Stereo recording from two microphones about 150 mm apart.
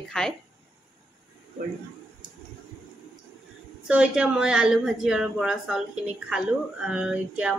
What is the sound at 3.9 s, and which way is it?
Speech, 5° right (ahead or behind).